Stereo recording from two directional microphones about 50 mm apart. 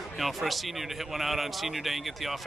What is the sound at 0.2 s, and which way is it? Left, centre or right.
Speech, centre.